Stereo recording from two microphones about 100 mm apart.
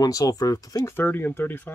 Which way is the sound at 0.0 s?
35° left (ahead or behind).